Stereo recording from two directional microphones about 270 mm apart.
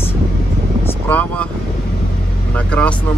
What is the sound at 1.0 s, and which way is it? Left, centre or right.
Speech, centre.